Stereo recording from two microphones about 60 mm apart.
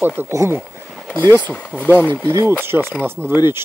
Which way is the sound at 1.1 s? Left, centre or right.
Left.